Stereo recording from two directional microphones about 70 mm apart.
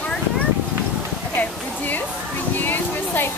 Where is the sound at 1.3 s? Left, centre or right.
Left.